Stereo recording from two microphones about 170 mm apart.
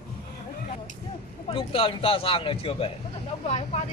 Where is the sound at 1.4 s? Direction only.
30° left (ahead or behind).